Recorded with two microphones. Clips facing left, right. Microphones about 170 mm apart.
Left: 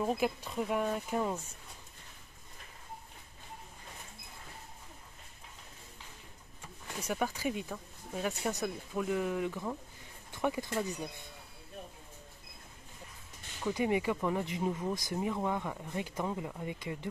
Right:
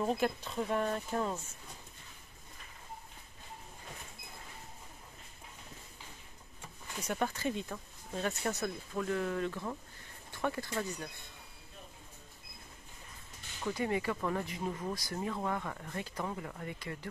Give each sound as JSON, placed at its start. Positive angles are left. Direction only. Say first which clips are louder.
{"t": 0.0, "sound": "speech", "louder": "even", "side_deg": 5}
{"t": 7.1, "sound": "speech", "louder": "even", "side_deg": 10}
{"t": 13.7, "sound": "speech", "louder": "left 3 dB", "side_deg": 15}